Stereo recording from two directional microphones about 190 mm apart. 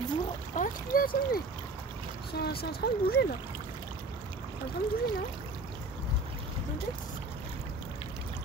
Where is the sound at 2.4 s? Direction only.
55° left (ahead or behind).